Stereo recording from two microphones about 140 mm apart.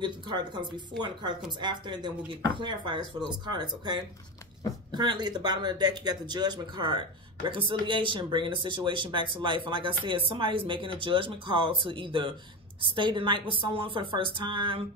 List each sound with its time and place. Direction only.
0.0 s speech: 30° right (ahead or behind)